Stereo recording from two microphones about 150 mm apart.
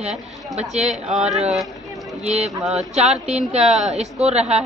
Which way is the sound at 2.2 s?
45° right (ahead or behind).